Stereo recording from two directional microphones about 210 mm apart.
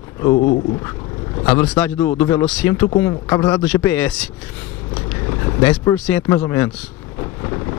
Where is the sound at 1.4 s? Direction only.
5° left (ahead or behind).